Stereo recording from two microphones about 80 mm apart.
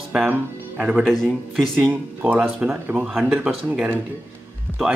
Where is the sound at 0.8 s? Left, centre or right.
Centre.